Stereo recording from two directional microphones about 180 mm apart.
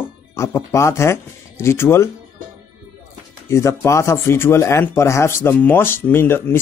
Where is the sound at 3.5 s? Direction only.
15° left (ahead or behind).